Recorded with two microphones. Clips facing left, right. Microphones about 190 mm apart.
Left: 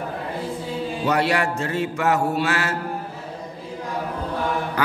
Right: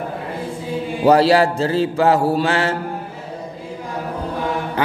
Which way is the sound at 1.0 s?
35° right (ahead or behind).